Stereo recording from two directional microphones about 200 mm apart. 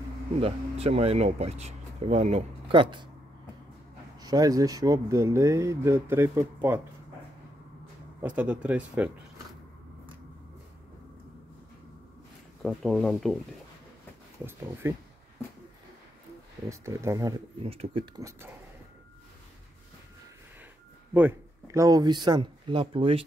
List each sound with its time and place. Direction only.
0.4 s speech: 30° right (ahead or behind)
4.2 s speech: 20° right (ahead or behind)
8.2 s speech: 5° right (ahead or behind)
12.6 s speech: 5° left (ahead or behind)
14.4 s speech: 10° right (ahead or behind)
16.6 s speech: 15° right (ahead or behind)
17.6 s speech: 25° right (ahead or behind)
21.1 s speech: 10° right (ahead or behind); by 23.2 s 25° right (ahead or behind)